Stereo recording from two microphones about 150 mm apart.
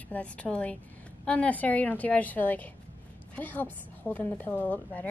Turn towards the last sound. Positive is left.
turn(degrees=10)  # may be behind; listen again after turning